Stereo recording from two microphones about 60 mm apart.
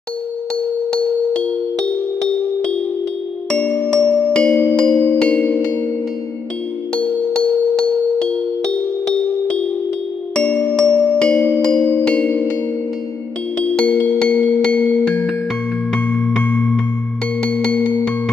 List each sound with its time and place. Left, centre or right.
3.4 s music: left
7.8 s music: centre
10.3 s music: left
13.8 s music: left
15.0 s music: centre
16.4 s music: left